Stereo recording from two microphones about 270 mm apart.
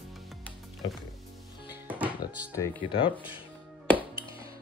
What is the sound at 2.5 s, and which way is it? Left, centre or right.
Speech, centre.